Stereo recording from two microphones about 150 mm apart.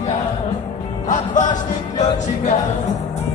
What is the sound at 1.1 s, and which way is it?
Music, 55° left (ahead or behind).